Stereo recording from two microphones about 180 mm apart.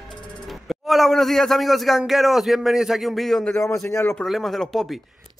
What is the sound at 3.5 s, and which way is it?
Speech, 15° left (ahead or behind).